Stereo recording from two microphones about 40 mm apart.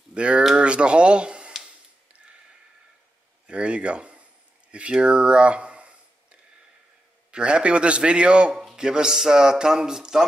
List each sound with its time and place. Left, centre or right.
0.1 s speech: right
3.4 s speech: right
7.2 s a man's voice: right